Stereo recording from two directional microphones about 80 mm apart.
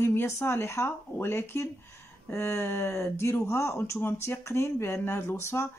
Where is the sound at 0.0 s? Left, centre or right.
Left.